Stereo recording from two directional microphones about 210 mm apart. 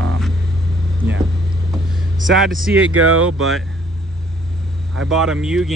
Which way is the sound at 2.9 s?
85° right.